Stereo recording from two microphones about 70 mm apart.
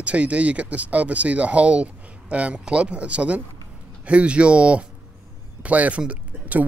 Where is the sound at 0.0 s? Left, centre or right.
Centre.